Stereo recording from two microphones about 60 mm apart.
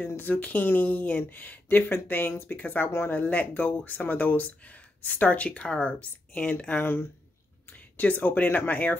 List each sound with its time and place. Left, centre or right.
0.1 s speech: left
6.8 s speech: left
7.7 s speech: left